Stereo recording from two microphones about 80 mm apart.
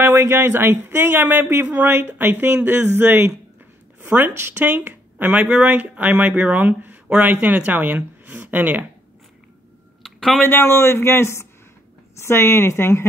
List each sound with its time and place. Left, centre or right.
0.0 s speech: right
5.4 s speech: centre
10.0 s a sound: centre
10.4 s a man's voice: left